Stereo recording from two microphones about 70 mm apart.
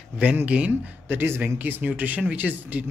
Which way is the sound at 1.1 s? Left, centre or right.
Right.